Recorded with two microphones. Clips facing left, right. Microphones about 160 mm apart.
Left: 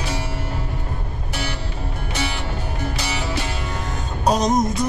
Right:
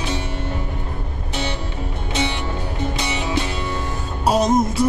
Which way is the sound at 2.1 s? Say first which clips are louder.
Right 4 dB; 20° right (ahead or behind).